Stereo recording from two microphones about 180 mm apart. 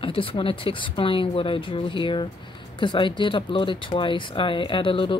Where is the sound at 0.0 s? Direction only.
30° left (ahead or behind).